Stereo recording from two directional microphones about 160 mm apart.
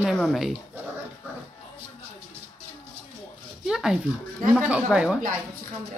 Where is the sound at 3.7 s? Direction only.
5° right (ahead or behind).